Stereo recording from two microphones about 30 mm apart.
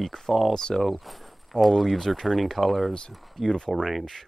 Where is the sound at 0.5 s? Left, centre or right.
Centre.